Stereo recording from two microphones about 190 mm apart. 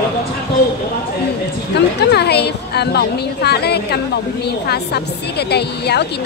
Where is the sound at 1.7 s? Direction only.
60° left (ahead or behind).